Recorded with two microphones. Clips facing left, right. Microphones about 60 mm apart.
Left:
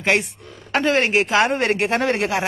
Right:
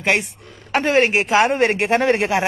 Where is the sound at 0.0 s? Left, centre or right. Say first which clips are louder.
Even; centre.